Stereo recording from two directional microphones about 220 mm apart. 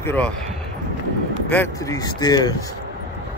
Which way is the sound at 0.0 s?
10° left (ahead or behind).